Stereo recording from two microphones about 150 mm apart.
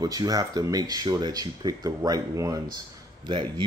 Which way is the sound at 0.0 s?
25° right (ahead or behind).